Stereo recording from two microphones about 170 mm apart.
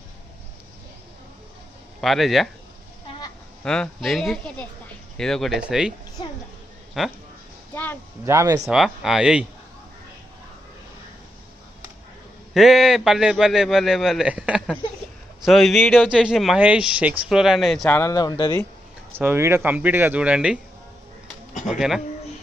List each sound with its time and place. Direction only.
2.0 s speech: centre (ahead or behind)
3.6 s speech: 5° left (ahead or behind)
6.2 s a sound: 25° left (ahead or behind)
7.0 s speech: centre (ahead or behind)
7.7 s speech: 10° left (ahead or behind)
8.3 s speech: 15° right (ahead or behind)
8.6 s speech: centre (ahead or behind)
12.5 s speech: centre (ahead or behind)
17.8 s speech: 20° left (ahead or behind)
19.1 s speech: 15° right (ahead or behind)
21.6 s speech: centre (ahead or behind)